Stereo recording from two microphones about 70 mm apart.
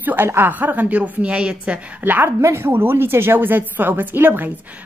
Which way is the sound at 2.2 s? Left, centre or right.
Right.